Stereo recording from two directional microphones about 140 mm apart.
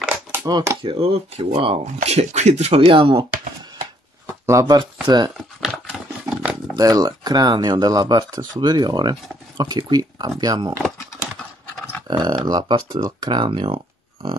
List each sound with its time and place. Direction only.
0.0 s a sound: 10° right (ahead or behind)
0.5 s speech: 25° right (ahead or behind)
0.8 s speech: 45° right (ahead or behind)
2.8 s speech: 40° right (ahead or behind)
4.5 s speech: 25° right (ahead or behind)
5.6 s a sound: centre (ahead or behind)
6.7 s speech: 25° right (ahead or behind)
12.1 s speech: 30° right (ahead or behind)